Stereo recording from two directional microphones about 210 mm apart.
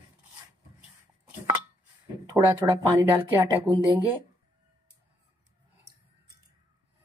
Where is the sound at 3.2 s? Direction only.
10° right (ahead or behind).